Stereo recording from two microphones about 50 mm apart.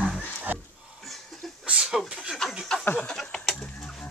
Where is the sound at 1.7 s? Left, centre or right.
Centre.